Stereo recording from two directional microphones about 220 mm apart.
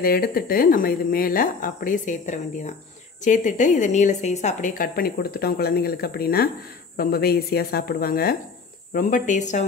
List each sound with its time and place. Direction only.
0.0 s a woman's voice: 40° left (ahead or behind)